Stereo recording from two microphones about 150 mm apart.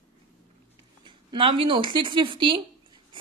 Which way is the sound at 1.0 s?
35° right (ahead or behind).